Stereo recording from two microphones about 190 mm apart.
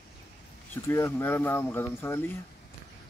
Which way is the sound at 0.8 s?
15° left (ahead or behind).